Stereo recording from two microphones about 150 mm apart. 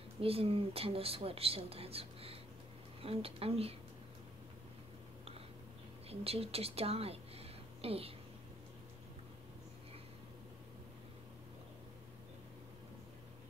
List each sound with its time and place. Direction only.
0.2 s speech: 40° right (ahead or behind)
6.0 s speech: 40° right (ahead or behind)